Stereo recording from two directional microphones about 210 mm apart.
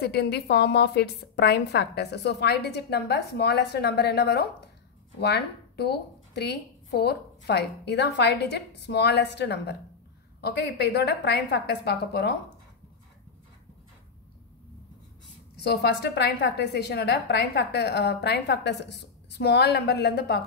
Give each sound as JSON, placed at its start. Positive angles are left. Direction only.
{"t": 0.0, "sound": "a woman's voice", "side_deg": 50}
{"t": 15.6, "sound": "a woman's voice", "side_deg": 50}